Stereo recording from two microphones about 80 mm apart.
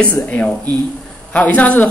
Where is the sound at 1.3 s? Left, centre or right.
Centre.